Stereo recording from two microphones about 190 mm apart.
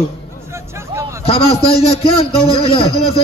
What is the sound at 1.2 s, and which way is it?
A man's voice, 30° left (ahead or behind).